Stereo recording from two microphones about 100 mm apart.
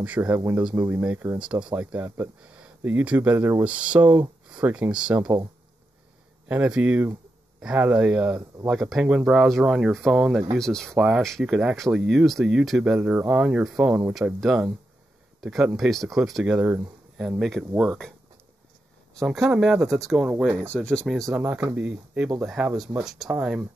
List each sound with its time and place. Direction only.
0.0 s speech: 15° right (ahead or behind)
2.4 s a sound: 10° right (ahead or behind)
2.8 s speech: 15° right (ahead or behind)
3.6 s speech: 10° right (ahead or behind)
6.5 s speech: 10° right (ahead or behind); by 11.0 s 5° left (ahead or behind)
11.0 s speech: 10° right (ahead or behind)
11.7 s speech: 5° left (ahead or behind)
16.5 s speech: 15° right (ahead or behind)
17.4 s speech: centre (ahead or behind)
19.2 s speech: 5° right (ahead or behind)
19.9 s speech: centre (ahead or behind)
20.6 s speech: 10° left (ahead or behind)
21.4 s speech: 20° right (ahead or behind)
22.8 s speech: centre (ahead or behind)